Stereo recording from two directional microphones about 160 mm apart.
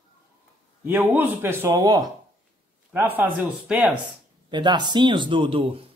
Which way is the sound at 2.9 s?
10° right (ahead or behind).